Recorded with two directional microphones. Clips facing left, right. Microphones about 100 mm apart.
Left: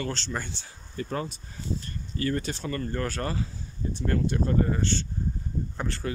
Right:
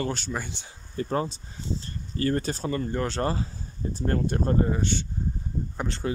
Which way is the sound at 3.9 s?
40° right (ahead or behind).